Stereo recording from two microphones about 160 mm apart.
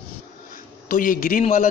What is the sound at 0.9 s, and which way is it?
Speech, 60° left (ahead or behind).